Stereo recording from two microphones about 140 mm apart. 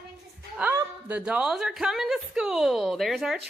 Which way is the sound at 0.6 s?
15° right (ahead or behind).